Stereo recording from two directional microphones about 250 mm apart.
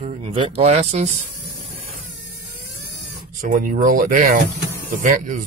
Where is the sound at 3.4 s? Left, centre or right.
Right.